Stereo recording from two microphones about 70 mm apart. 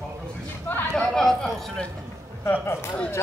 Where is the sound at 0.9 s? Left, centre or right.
Centre.